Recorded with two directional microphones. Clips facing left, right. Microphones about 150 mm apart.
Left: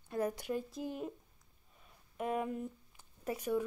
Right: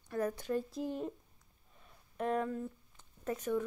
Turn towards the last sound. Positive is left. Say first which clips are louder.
# even
turn(degrees=10)  # may be behind; listen again after turning